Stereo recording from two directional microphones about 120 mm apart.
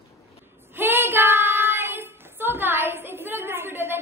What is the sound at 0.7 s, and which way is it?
Child singing, 20° right (ahead or behind).